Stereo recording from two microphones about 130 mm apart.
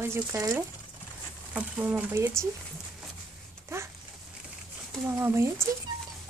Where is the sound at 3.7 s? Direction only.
20° right (ahead or behind).